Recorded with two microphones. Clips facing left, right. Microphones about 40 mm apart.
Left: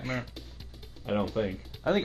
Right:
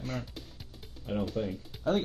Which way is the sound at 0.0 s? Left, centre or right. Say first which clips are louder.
Left 3 dB; left.